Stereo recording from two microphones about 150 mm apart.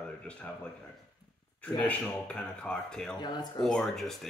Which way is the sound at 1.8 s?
10° left (ahead or behind).